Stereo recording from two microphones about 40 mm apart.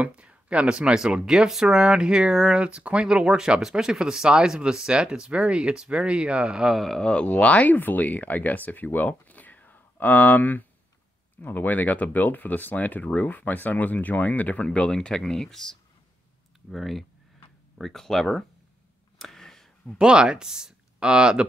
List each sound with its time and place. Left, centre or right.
0.0 s speech: right
7.0 s speech: left
7.3 s speech: left
7.7 s speech: left
14.6 s speech: left; by 18.4 s centre
19.1 s a sound: centre
20.0 s speech: right